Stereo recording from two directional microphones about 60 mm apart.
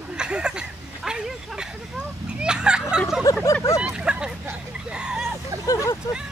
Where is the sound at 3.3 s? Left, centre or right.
Left.